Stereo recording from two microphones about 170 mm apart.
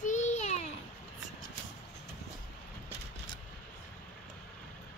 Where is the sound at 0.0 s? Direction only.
45° left (ahead or behind).